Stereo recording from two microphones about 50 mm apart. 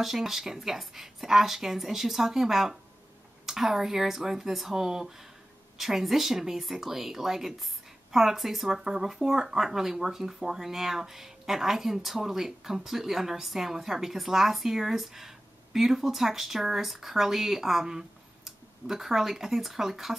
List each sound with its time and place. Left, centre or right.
0.0 s speech: centre